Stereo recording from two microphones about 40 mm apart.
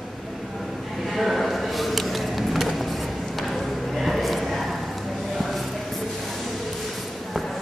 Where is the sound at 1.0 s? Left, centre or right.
Centre.